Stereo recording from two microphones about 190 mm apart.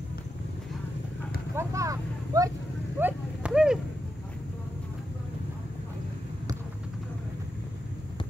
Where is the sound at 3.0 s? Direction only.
5° right (ahead or behind).